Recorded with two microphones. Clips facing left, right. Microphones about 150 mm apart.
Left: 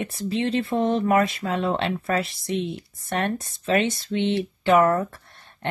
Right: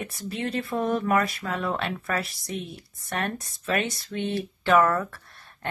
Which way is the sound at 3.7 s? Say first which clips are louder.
Left 5 dB; 25° left (ahead or behind).